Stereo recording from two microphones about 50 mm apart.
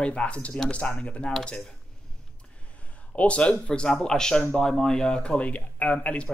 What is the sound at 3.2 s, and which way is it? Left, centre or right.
A man's voice, left.